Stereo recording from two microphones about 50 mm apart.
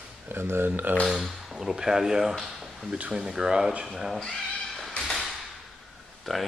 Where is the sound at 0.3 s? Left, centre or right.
Right.